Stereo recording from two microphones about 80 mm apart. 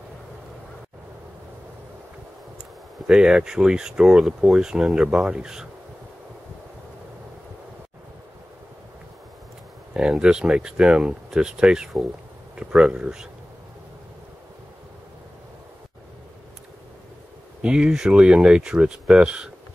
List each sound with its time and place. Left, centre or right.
3.1 s speech: centre
9.9 s speech: centre
17.6 s speech: centre